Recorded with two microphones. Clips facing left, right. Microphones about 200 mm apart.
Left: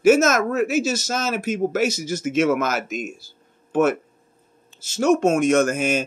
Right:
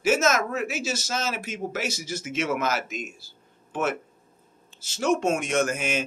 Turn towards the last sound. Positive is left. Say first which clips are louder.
# left 6 dB
turn(degrees=45)  # may be behind; listen again after turning